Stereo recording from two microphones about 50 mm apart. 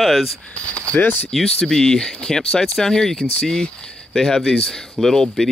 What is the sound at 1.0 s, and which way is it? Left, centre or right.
Speech, left.